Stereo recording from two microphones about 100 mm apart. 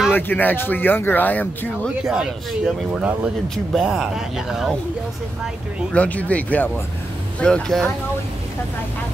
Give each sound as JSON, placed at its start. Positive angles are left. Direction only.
{"t": 0.1, "sound": "speech", "side_deg": 20}
{"t": 2.0, "sound": "speech", "side_deg": -5}
{"t": 5.9, "sound": "speech", "side_deg": 15}